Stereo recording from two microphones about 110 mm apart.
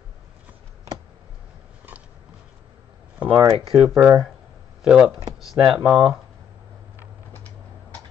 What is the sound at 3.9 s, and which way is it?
Speech, 20° right (ahead or behind).